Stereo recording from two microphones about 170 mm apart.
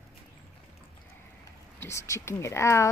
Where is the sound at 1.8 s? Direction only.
15° left (ahead or behind).